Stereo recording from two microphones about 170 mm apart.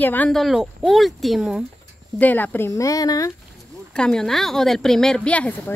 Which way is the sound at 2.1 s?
10° left (ahead or behind).